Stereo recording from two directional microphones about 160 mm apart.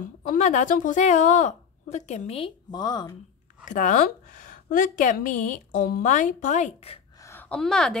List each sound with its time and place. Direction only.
0.0 s speech: 50° left (ahead or behind)
2.7 s a woman's voice: 25° left (ahead or behind)
3.6 s a woman's voice: 55° left (ahead or behind)
7.2 s speech: 10° left (ahead or behind)